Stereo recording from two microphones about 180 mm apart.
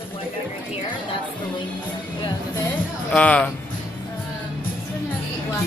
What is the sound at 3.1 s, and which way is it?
Speech, 5° left (ahead or behind).